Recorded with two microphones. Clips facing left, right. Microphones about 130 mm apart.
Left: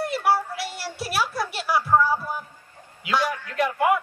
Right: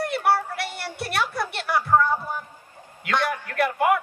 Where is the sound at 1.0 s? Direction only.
5° left (ahead or behind).